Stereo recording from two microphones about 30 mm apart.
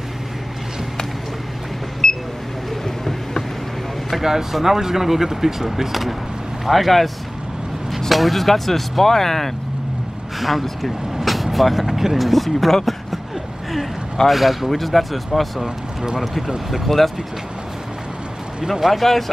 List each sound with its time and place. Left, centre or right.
2.0 s a sound: centre
4.2 s speech: centre
8.1 s speech: centre
10.4 s speech: centre
14.2 s speech: centre
15.6 s speech: right
16.8 s speech: centre
18.6 s speech: centre